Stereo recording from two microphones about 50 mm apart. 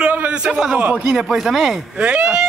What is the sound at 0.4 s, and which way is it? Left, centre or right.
Speech, centre.